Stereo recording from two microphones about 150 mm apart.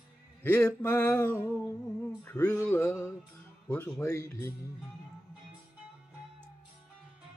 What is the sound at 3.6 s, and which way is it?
Speech, 15° left (ahead or behind).